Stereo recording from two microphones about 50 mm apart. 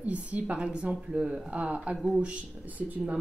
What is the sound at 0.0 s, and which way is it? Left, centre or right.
Speech, right.